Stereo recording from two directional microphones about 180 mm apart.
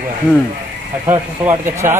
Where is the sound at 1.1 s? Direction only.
15° right (ahead or behind).